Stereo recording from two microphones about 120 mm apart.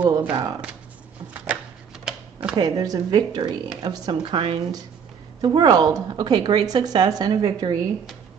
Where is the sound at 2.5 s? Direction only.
35° right (ahead or behind).